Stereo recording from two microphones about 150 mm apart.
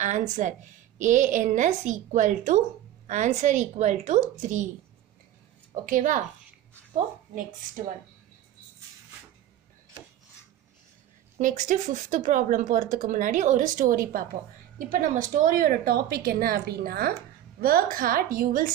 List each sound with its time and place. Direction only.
0.0 s a woman's voice: 55° right (ahead or behind)
5.9 s a woman's voice: 60° right (ahead or behind)
11.3 s a woman's voice: 55° right (ahead or behind); by 17.1 s 90° right
17.6 s a woman's voice: 75° right (ahead or behind)